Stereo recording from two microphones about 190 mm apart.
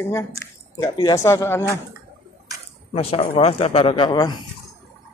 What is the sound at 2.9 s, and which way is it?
A man's voice, 30° left (ahead or behind).